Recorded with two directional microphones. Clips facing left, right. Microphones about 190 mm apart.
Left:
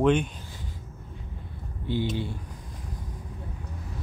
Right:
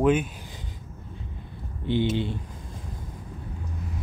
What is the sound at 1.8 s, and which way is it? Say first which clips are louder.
Speech: right 4 dB; 20° right (ahead or behind).